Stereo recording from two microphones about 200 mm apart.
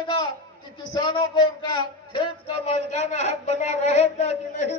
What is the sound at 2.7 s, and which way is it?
Speech, 35° left (ahead or behind).